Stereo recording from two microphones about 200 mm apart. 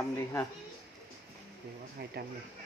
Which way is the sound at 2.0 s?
50° right (ahead or behind).